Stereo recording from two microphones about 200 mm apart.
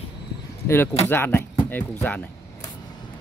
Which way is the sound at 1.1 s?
10° left (ahead or behind).